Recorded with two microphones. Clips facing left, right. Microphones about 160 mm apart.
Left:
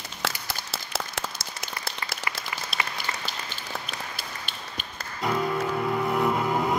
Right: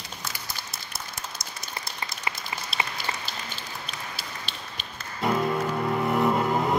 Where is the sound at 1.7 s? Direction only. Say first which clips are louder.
Even; 25° right (ahead or behind).